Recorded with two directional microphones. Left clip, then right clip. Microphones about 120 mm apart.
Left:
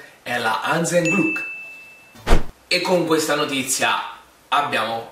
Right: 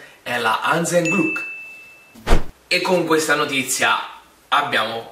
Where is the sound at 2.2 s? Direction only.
Centre (ahead or behind).